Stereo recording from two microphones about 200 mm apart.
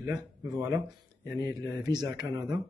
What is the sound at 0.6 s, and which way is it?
Speech, 15° right (ahead or behind).